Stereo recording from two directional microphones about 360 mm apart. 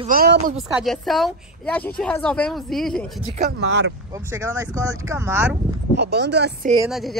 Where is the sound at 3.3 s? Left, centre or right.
Right.